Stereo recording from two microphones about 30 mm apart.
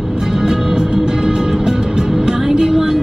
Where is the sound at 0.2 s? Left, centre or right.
Centre.